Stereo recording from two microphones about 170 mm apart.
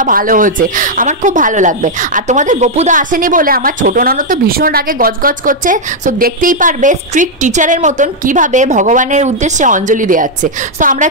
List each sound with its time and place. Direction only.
0.0 s a woman's voice: 55° right (ahead or behind)